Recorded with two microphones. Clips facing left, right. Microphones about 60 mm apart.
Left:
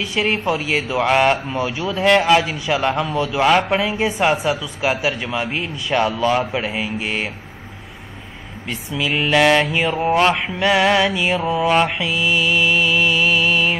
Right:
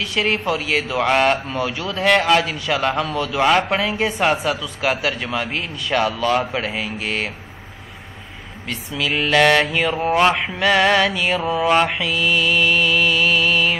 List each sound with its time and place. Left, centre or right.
0.0 s speech: centre
8.6 s speech: centre